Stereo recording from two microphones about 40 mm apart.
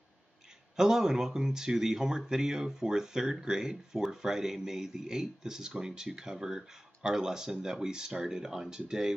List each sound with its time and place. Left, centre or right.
0.7 s speech: centre